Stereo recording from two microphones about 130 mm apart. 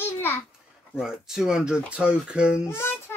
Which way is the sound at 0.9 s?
5° right (ahead or behind).